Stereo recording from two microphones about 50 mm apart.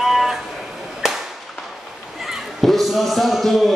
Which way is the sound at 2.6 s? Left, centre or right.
Centre.